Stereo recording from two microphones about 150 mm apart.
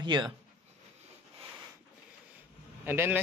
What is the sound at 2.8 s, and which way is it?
Speech, 15° right (ahead or behind).